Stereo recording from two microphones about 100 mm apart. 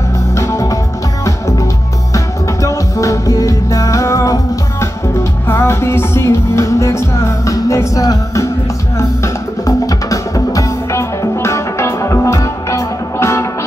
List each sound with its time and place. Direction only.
0.4 s music: 30° left (ahead or behind)
2.1 s music: 30° left (ahead or behind)